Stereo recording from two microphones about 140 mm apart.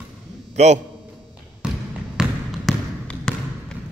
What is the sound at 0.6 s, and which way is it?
Speech, 55° right (ahead or behind).